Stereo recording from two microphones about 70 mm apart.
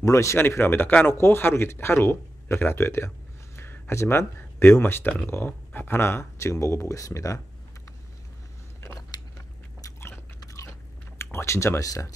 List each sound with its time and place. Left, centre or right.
0.0 s speech: left
0.4 s speech: left
9.1 s biting: left
9.9 s biting: left
11.1 s speech: left